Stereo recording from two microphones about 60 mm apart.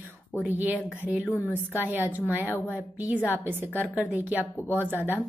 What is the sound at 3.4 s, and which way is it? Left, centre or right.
A woman's voice, right.